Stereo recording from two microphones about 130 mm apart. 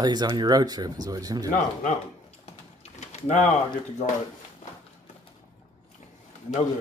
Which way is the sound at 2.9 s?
65° left (ahead or behind).